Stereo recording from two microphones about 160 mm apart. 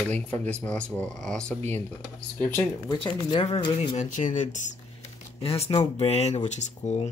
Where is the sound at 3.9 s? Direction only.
50° left (ahead or behind).